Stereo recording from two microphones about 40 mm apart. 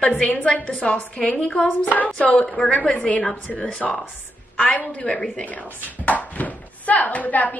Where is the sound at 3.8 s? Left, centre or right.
Centre.